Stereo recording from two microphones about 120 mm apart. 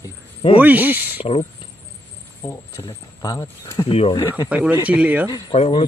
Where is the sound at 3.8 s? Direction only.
55° left (ahead or behind).